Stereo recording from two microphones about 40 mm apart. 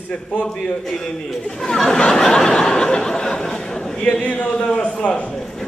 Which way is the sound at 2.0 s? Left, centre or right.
Centre.